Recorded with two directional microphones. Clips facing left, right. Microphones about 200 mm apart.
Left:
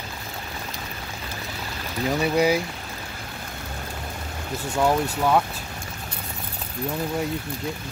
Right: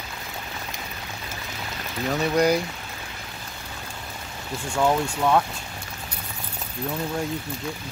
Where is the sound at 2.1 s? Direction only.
10° left (ahead or behind).